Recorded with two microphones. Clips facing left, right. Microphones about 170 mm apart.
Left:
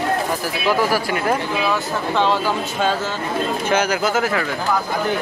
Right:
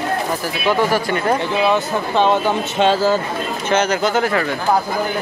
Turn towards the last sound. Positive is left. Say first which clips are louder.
# right 2 dB
turn(degrees=5)  # may be behind; listen again after turning